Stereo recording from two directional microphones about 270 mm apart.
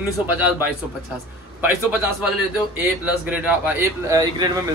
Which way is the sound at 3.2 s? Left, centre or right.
Centre.